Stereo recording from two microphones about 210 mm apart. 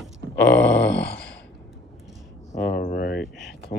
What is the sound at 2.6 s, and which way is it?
Speech, 45° left (ahead or behind).